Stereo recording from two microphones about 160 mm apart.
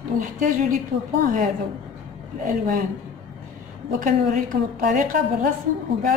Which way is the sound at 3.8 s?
55° right (ahead or behind).